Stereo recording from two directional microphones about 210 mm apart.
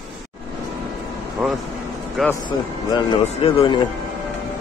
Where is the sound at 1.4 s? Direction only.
Centre (ahead or behind).